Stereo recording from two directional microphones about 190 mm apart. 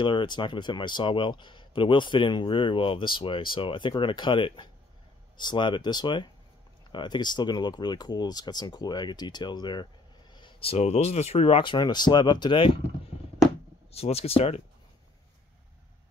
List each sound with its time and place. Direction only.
0.0 s speech: 25° left (ahead or behind)
13.9 s speech: 30° left (ahead or behind)